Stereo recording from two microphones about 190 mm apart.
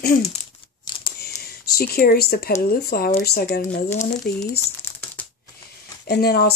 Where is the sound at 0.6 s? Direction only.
25° left (ahead or behind).